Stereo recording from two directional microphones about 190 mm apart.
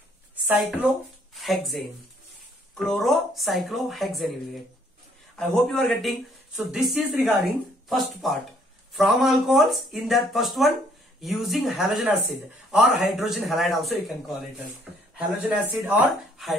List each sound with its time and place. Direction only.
0.5 s speech: 10° right (ahead or behind)
2.8 s speech: centre (ahead or behind)
5.3 s speech: 5° left (ahead or behind)
15.1 s speech: 5° right (ahead or behind)